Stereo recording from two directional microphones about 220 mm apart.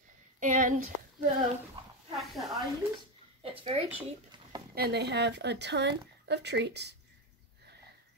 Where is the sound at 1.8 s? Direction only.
20° right (ahead or behind).